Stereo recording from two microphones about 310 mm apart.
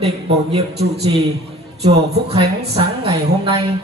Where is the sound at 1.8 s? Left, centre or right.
Centre.